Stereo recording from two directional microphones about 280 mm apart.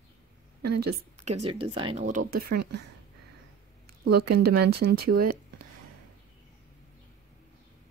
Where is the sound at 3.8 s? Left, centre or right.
Right.